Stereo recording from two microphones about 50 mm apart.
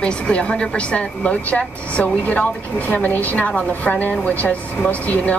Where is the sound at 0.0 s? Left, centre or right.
Left.